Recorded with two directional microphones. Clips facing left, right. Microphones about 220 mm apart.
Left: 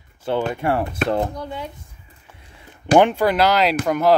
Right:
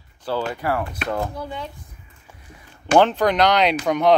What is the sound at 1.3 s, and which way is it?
Speech, 5° right (ahead or behind).